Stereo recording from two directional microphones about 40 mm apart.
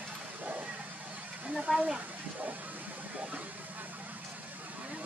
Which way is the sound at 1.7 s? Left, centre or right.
Right.